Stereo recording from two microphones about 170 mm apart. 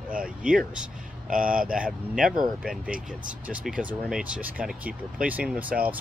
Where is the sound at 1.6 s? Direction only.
5° right (ahead or behind).